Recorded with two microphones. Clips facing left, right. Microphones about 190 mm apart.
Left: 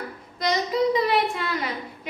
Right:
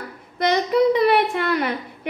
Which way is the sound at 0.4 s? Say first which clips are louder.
Right 5 dB; 60° right (ahead or behind).